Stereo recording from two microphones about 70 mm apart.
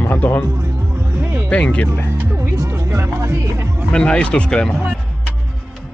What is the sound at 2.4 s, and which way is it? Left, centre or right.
Music, right.